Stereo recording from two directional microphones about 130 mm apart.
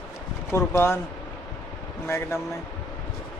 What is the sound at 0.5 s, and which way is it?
Speech, 20° left (ahead or behind).